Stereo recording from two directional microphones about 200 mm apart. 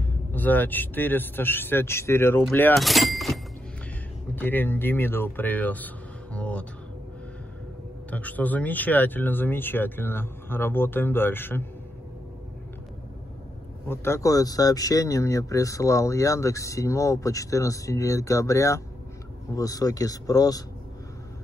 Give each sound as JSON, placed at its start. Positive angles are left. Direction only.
{"t": 0.3, "sound": "speech", "side_deg": 10}
{"t": 2.7, "sound": "speech", "side_deg": 0}
{"t": 4.4, "sound": "speech", "side_deg": 10}
{"t": 8.1, "sound": "speech", "side_deg": 10}
{"t": 13.8, "sound": "speech", "side_deg": 15}